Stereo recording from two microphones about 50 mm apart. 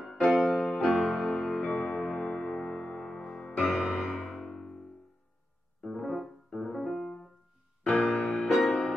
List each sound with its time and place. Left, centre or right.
0.0 s music: centre
0.5 s music: centre
1.6 s music: left
5.8 s piano: centre
7.8 s music: left
8.5 s music: centre